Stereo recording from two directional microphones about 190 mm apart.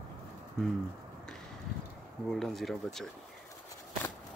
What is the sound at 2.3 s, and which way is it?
Speech, centre (ahead or behind).